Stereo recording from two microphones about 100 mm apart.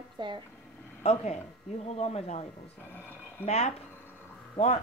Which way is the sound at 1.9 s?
90° left.